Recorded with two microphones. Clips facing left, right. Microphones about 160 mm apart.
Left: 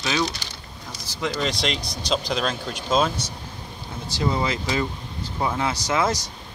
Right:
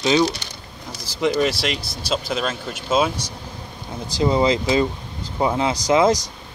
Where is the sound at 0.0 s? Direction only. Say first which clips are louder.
Right 7 dB; 25° right (ahead or behind).